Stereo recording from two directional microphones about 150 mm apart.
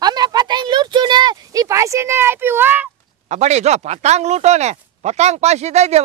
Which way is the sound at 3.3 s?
50° right (ahead or behind).